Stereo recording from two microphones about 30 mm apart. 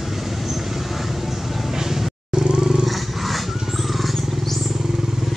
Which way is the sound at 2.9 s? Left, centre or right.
Centre.